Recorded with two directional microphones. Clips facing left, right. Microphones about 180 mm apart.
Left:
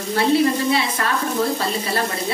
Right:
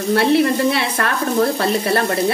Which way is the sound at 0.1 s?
65° right (ahead or behind).